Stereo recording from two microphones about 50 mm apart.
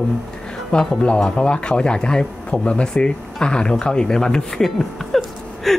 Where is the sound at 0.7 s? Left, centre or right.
Left.